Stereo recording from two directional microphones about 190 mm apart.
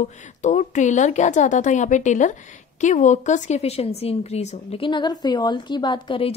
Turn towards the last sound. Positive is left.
turn(degrees=25)  # may be behind; listen again after turning